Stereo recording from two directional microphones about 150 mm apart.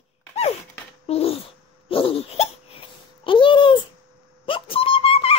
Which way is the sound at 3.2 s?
35° left (ahead or behind).